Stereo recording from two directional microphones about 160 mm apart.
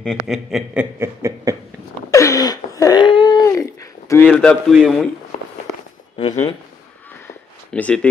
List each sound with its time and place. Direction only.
0.0 s a man's voice: centre (ahead or behind)
0.9 s a sound: 15° right (ahead or behind)
2.0 s a sound: 20° left (ahead or behind)
4.1 s a man's voice: 10° left (ahead or behind)
6.1 s speech: 40° left (ahead or behind)
7.7 s speech: 10° left (ahead or behind)